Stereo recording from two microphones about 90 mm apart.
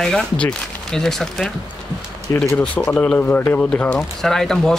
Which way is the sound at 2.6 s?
10° left (ahead or behind).